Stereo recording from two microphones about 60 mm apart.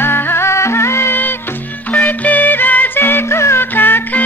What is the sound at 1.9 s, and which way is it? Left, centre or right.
Music, left.